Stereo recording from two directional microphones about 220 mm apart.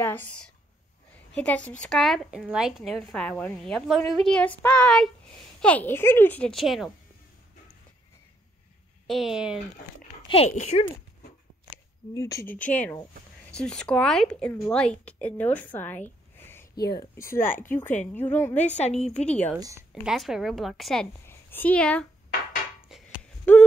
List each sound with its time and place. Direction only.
0.0 s a woman's voice: 10° left (ahead or behind)
9.0 s a woman's voice: centre (ahead or behind)
10.2 s speech: 25° left (ahead or behind)
11.7 s a sound: 15° left (ahead or behind)
12.6 s a woman's voice: 5° left (ahead or behind)
16.3 s a sound: 10° left (ahead or behind)
16.9 s a woman's voice: 15° left (ahead or behind)
17.4 s speech: 40° left (ahead or behind)
17.6 s a woman's voice: 10° left (ahead or behind)
18.6 s speech: 30° left (ahead or behind)
19.2 s a woman's voice: 5° left (ahead or behind)
22.8 s a sound: 5° right (ahead or behind)